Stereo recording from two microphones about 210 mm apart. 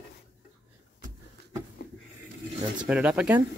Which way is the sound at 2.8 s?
5° right (ahead or behind).